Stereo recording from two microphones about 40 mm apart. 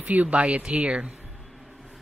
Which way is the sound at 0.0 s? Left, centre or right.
Right.